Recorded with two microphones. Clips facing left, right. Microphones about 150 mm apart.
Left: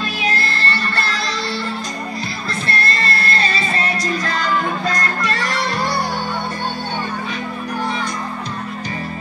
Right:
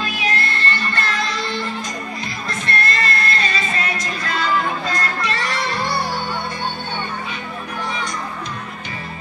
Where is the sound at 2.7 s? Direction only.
30° left (ahead or behind).